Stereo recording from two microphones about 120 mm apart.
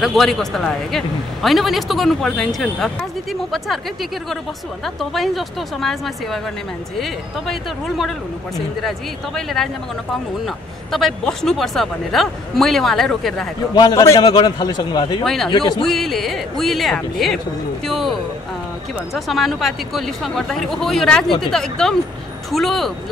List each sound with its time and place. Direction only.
0.0 s a man's voice: centre (ahead or behind)
13.7 s a man's voice: 35° left (ahead or behind)
14.0 s a man's voice: 25° left (ahead or behind)
14.3 s a man's voice: 35° left (ahead or behind)
15.2 s a man's voice: 5° left (ahead or behind)
15.5 s a man's voice: 40° left (ahead or behind)
15.8 s a man's voice: centre (ahead or behind)
17.8 s a sound: centre (ahead or behind)
19.1 s a man's voice: centre (ahead or behind)